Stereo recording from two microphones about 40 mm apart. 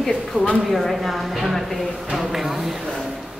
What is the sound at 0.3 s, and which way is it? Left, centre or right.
Speech, right.